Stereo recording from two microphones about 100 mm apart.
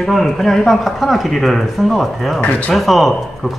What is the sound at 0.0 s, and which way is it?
Speech, centre (ahead or behind).